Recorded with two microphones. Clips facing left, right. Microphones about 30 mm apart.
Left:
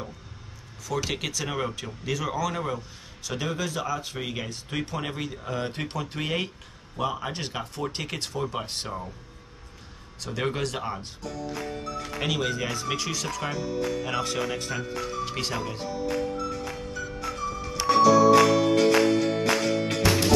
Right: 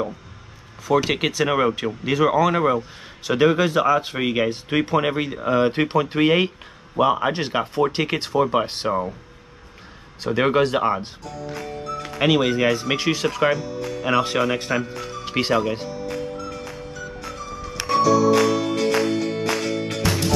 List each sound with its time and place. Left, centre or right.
0.8 s speech: right
10.2 s speech: right
11.2 s music: centre
12.0 s speech: right
13.6 s speech: centre
14.1 s speech: right
15.9 s music: centre